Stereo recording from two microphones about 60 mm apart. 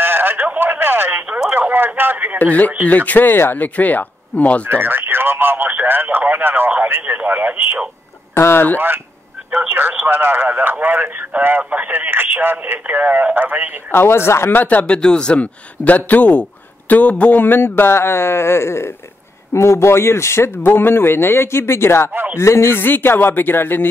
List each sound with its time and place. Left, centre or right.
0.0 s a sound: right
2.3 s speech: left
4.6 s radio: right
8.4 s speech: left
8.7 s speech: right
13.9 s speech: left
14.6 s speech: left
15.0 s speech: centre; by 22.1 s left
22.1 s speech: right
22.4 s a man's voice: left